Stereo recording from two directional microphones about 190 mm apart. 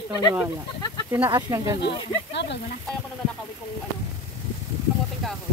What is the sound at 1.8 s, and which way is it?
Speech, 65° left (ahead or behind).